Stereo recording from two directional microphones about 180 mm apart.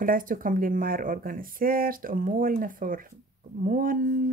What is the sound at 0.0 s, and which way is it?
Speech, 50° right (ahead or behind).